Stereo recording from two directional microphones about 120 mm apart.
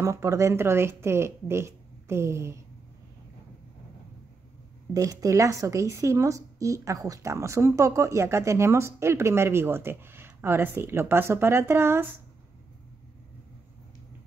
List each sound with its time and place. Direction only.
0.0 s speech: 25° right (ahead or behind)
4.9 s speech: 30° right (ahead or behind)